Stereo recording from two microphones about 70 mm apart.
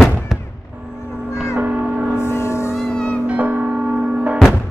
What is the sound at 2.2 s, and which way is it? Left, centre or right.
Music, left.